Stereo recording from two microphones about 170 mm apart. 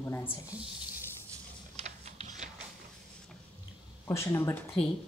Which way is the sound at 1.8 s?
40° right (ahead or behind).